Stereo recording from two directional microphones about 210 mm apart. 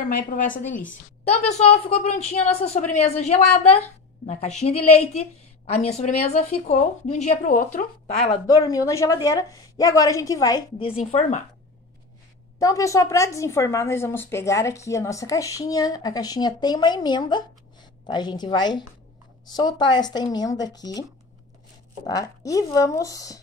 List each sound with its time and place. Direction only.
0.1 s a woman's voice: 40° left (ahead or behind)
8.3 s a woman's voice: 20° left (ahead or behind); by 11.4 s 35° left (ahead or behind)
12.5 s a woman's voice: 15° left (ahead or behind)
22.0 s a woman's voice: 15° left (ahead or behind)